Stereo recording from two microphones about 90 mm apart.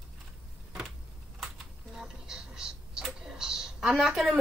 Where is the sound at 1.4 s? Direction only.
5° right (ahead or behind).